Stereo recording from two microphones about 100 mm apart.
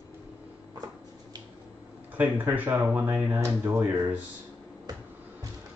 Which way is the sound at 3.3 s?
30° right (ahead or behind).